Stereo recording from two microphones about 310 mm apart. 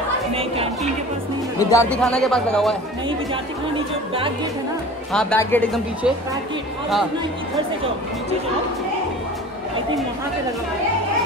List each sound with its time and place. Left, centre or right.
0.3 s chatter: centre
1.6 s a man's voice: centre
5.1 s a man's voice: centre